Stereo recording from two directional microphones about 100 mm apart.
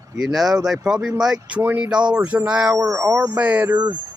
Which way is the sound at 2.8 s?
20° right (ahead or behind).